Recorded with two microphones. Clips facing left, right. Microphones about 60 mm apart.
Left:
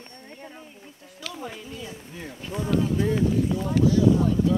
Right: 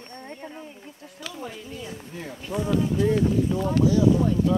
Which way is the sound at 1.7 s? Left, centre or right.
Right.